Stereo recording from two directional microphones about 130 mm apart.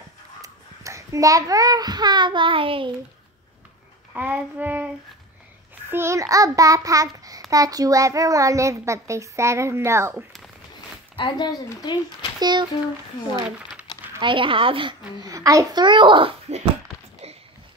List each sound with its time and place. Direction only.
0.4 s a child's voice: 25° right (ahead or behind); by 2.9 s 40° right (ahead or behind)
4.1 s child singing: 10° right (ahead or behind)
5.9 s child singing: 20° right (ahead or behind)
11.1 s speech: 35° left (ahead or behind)
12.4 s a child's voice: 35° right (ahead or behind)
14.2 s a child's voice: 40° right (ahead or behind)
15.2 s a child's voice: 25° right (ahead or behind); by 16.6 s 50° right (ahead or behind)